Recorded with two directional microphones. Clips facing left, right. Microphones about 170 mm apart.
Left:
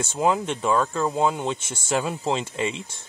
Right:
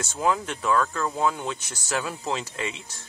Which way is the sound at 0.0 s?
20° left (ahead or behind).